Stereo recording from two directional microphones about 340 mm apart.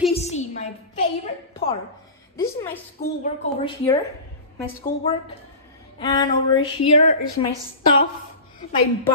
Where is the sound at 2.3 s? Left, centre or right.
Centre.